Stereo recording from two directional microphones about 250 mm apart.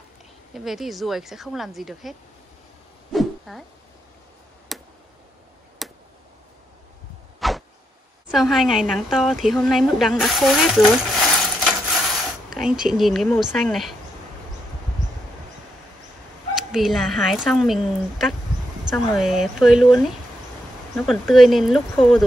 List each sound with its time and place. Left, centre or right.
0.5 s speech: centre
3.1 s a sound: centre
4.7 s tick: centre
7.3 s a sound: centre
8.3 s a woman's voice: centre
16.5 s speech: centre